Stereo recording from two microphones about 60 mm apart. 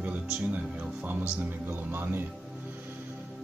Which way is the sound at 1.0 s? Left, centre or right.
Right.